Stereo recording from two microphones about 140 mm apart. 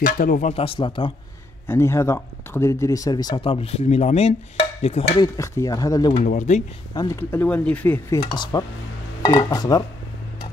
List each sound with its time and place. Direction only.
0.0 s speech: 90° left
0.5 s a man's voice: 45° left (ahead or behind)
1.7 s speech: 20° left (ahead or behind); by 5.2 s 50° left (ahead or behind)
5.2 s speech: 25° left (ahead or behind)
6.1 s speech: 65° left (ahead or behind)
6.9 s speech: 30° left (ahead or behind)
7.2 s speech: 15° left (ahead or behind)
8.4 s speech: 35° left (ahead or behind)